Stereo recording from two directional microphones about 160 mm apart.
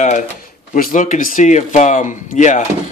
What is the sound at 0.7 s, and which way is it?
Speech, 55° left (ahead or behind).